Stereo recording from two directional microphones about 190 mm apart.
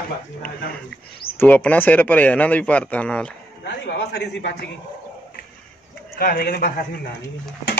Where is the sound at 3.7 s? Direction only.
60° left (ahead or behind).